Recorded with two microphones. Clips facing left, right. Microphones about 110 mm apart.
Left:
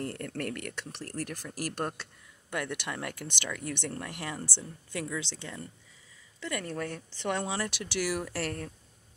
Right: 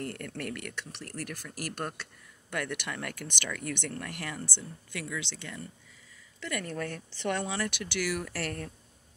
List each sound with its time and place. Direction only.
0.0 s speech: 30° left (ahead or behind)